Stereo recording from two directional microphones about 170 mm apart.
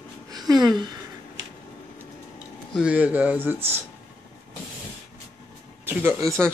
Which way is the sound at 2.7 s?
5° right (ahead or behind).